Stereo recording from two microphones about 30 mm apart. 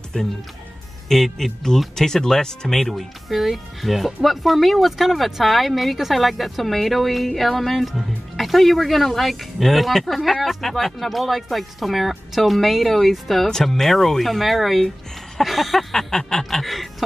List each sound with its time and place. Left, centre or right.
0.1 s speech: left
1.0 s speech: centre
2.8 s speech: centre
13.5 s speech: centre
15.9 s speech: centre
16.4 s speech: centre